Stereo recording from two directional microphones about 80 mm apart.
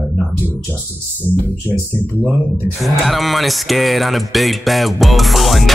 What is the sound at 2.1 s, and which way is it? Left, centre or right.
Speech, left.